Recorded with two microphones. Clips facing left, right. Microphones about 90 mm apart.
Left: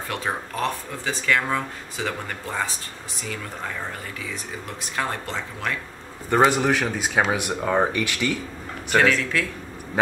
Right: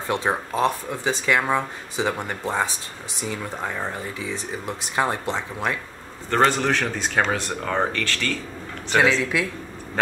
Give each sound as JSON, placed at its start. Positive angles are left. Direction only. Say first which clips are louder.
{"t": 0.1, "sound": "speech", "louder": "right 5 dB", "side_deg": -25}
{"t": 6.3, "sound": "speech", "louder": "left 1 dB", "side_deg": 10}
{"t": 8.9, "sound": "a man's voice", "louder": "even", "side_deg": -15}